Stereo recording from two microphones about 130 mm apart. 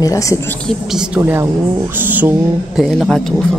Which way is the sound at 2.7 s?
Centre (ahead or behind).